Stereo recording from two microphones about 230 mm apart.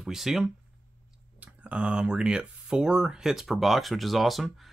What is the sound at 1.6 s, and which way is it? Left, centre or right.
Speech, centre.